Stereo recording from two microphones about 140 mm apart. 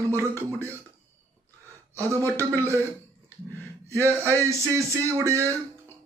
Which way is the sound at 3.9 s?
20° right (ahead or behind).